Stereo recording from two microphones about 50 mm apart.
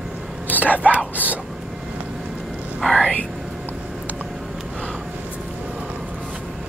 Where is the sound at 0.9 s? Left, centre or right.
Left.